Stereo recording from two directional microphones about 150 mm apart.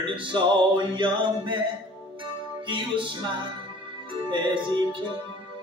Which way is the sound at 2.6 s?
35° right (ahead or behind).